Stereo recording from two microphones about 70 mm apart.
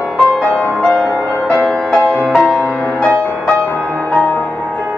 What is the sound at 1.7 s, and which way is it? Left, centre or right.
Music, centre.